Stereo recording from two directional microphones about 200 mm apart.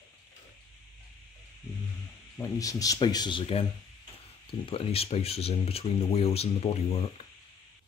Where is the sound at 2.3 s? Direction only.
15° left (ahead or behind).